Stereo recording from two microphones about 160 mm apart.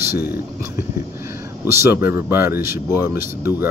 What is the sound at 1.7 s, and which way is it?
Speech, 15° right (ahead or behind).